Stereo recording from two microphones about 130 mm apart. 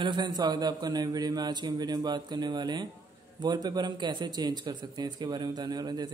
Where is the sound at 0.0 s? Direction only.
35° right (ahead or behind).